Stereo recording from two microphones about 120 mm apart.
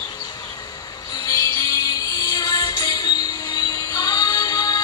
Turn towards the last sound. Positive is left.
turn(degrees=30)  # may be behind; listen again after turning